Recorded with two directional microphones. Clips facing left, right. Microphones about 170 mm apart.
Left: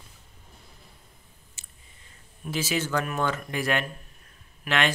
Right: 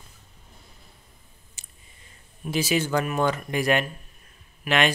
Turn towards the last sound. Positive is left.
turn(degrees=-15)  # may be behind; listen again after turning